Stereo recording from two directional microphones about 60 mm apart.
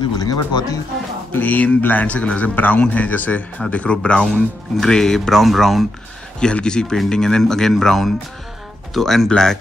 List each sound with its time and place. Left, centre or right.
0.2 s speech: left
1.4 s speech: left; by 5.9 s centre
6.4 s speech: centre